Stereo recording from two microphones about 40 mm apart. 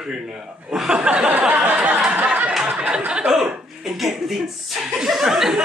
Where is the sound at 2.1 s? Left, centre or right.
Right.